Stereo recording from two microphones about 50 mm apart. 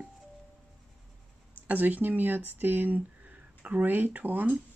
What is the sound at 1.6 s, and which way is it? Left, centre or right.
Speech, right.